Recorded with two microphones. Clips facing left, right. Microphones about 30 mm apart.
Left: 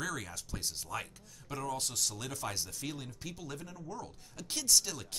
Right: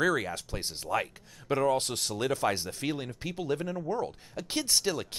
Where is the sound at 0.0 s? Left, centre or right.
Right.